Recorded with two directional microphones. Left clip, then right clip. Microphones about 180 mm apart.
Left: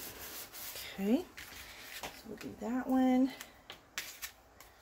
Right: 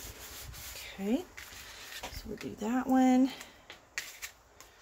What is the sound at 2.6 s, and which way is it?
Speech, 50° right (ahead or behind).